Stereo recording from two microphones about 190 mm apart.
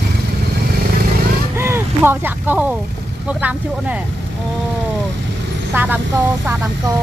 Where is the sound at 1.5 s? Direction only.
15° right (ahead or behind).